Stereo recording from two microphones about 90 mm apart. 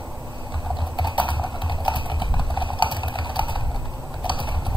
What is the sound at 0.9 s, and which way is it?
Typing, 60° left (ahead or behind).